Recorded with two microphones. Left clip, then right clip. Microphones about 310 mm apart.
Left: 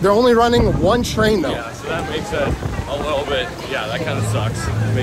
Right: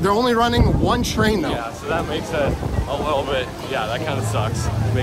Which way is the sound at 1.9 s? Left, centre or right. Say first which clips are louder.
Even; centre.